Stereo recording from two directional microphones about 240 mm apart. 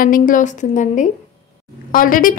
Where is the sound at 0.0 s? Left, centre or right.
Left.